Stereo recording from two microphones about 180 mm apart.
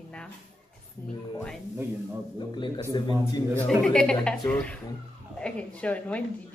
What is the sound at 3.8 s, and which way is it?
A woman's voice, 5° left (ahead or behind).